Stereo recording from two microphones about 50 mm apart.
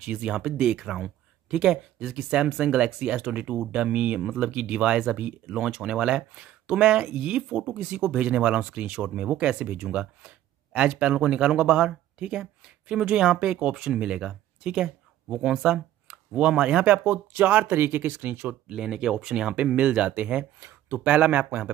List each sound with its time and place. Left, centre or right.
0.0 s speech: right
4.2 s speech: centre
16.8 s speech: right
18.7 s speech: centre
19.3 s speech: right